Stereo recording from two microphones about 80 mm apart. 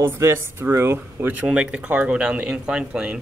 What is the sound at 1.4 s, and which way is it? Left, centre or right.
Speech, centre.